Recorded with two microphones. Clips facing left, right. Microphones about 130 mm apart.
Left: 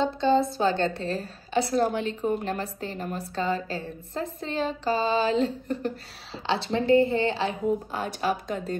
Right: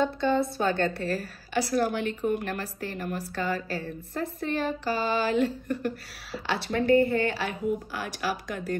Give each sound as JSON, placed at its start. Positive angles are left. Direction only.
{"t": 0.0, "sound": "a woman's voice", "side_deg": 20}